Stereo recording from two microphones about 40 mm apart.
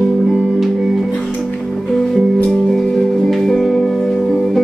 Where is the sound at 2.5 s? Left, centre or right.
Centre.